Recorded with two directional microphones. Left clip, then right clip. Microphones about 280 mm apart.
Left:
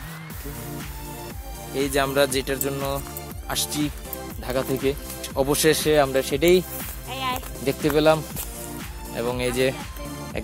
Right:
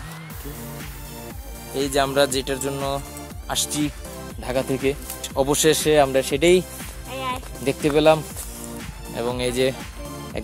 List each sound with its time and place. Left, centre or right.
1.8 s speech: centre
7.1 s music: left
7.6 s speech: centre